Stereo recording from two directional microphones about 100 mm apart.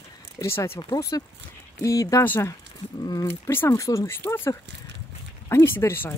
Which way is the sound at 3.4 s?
25° left (ahead or behind).